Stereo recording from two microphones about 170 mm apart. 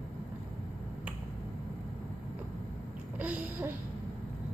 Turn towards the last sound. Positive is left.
turn(degrees=-10)  # may be behind; listen again after turning